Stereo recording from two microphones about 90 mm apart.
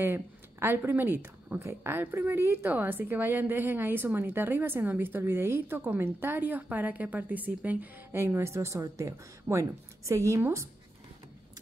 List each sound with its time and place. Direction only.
0.0 s speech: 25° right (ahead or behind)